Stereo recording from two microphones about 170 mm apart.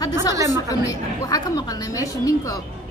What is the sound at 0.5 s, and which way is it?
A woman's voice, 20° left (ahead or behind).